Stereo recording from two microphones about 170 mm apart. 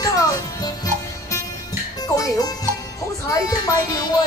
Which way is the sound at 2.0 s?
20° left (ahead or behind).